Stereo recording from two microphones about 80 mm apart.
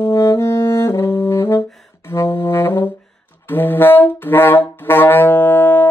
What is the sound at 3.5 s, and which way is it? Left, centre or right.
Brass instrument, left.